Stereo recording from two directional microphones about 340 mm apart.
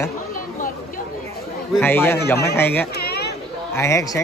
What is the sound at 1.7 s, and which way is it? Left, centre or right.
Speech, centre.